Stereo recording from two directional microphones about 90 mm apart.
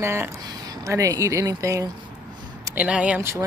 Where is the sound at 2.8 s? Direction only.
15° right (ahead or behind).